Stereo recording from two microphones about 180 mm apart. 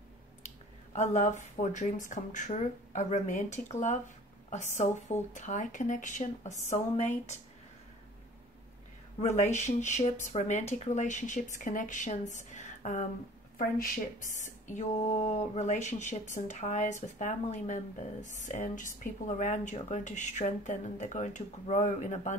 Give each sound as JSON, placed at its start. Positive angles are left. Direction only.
{"t": 0.9, "sound": "a woman's voice", "side_deg": 40}
{"t": 9.2, "sound": "a woman's voice", "side_deg": 40}
{"t": 14.3, "sound": "a woman's voice", "side_deg": 45}